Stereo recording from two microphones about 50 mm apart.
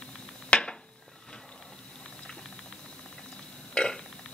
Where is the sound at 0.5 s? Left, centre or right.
Left.